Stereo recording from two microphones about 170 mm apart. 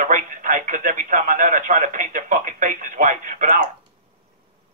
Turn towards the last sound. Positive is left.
turn(degrees=-50)  # may be behind; listen again after turning